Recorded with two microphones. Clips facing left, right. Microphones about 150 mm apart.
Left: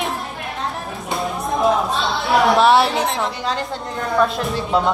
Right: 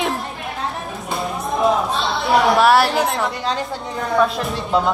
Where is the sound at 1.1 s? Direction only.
Centre (ahead or behind).